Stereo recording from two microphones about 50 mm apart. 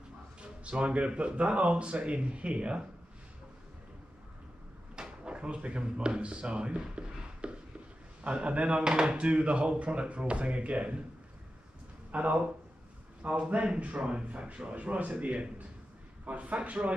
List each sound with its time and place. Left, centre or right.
0.4 s speech: right
4.9 s speech: centre
12.1 s speech: right